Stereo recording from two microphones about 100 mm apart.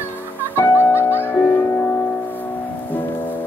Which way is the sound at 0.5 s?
20° left (ahead or behind).